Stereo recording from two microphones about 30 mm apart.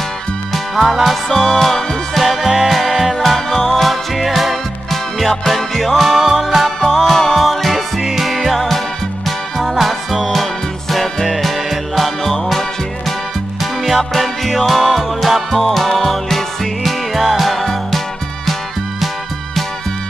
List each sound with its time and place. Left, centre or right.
0.7 s music: centre
1.5 s music: centre
2.4 s music: centre
2.7 s music: centre
3.2 s music: centre
7.3 s music: centre
13.9 s music: centre